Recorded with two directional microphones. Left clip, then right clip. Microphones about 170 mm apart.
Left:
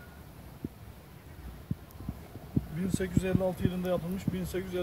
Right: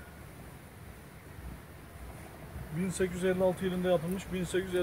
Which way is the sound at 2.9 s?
40° right (ahead or behind).